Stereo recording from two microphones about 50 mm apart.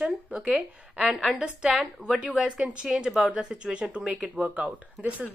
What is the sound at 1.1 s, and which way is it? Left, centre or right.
Speech, centre.